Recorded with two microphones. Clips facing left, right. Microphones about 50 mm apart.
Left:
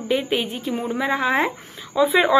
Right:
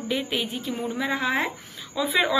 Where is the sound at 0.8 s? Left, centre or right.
Left.